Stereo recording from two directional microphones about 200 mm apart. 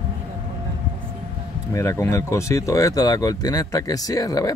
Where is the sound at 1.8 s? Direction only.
15° left (ahead or behind).